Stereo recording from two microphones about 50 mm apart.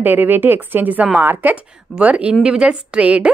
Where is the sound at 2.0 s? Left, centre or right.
Right.